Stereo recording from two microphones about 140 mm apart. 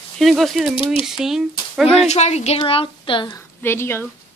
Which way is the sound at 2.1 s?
50° left (ahead or behind).